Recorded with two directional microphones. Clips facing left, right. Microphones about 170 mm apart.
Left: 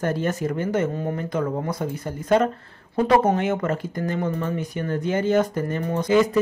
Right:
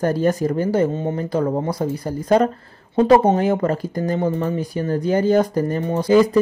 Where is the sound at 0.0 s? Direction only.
35° right (ahead or behind).